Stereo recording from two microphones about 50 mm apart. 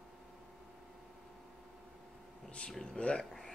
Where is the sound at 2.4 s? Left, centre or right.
Left.